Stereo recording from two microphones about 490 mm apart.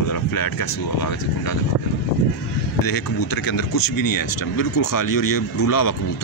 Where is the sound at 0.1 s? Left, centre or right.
Left.